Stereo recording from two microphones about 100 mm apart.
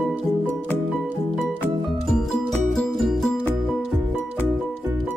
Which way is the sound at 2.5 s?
5° left (ahead or behind).